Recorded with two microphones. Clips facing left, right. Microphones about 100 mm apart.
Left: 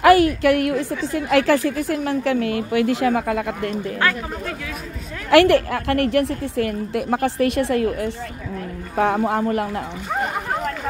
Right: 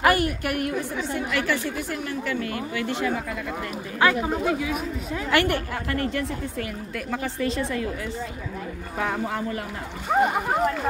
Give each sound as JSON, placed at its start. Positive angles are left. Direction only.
{"t": 0.0, "sound": "a woman's voice", "side_deg": 90}
{"t": 4.0, "sound": "speech", "side_deg": -15}
{"t": 5.3, "sound": "a woman's voice", "side_deg": 90}
{"t": 10.2, "sound": "speech", "side_deg": -5}